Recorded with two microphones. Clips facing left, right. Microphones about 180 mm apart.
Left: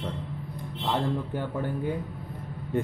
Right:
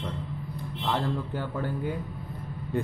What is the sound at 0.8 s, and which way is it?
A man's voice, 20° left (ahead or behind).